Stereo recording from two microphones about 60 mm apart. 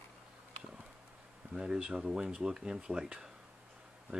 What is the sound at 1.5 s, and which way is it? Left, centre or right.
Speech, centre.